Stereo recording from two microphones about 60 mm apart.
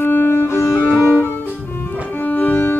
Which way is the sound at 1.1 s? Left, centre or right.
Left.